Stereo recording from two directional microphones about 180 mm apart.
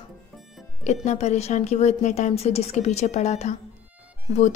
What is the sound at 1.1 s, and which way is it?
A woman's voice, 40° left (ahead or behind).